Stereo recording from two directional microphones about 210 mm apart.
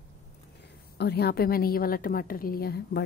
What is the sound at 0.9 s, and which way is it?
A woman's voice, 50° left (ahead or behind).